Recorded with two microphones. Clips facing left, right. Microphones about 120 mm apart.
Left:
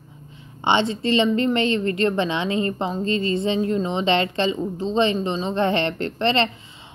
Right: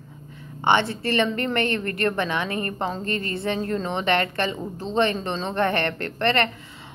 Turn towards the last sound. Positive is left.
turn(degrees=20)  # may be behind; listen again after turning